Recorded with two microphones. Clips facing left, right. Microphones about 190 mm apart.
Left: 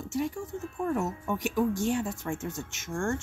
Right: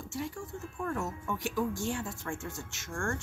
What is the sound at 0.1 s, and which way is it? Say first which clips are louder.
Speech: left 7 dB; 20° left (ahead or behind).